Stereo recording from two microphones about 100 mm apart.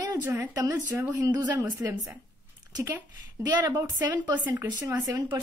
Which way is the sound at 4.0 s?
45° right (ahead or behind).